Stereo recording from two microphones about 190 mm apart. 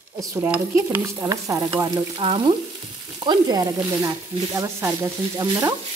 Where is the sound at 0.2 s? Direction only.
15° right (ahead or behind).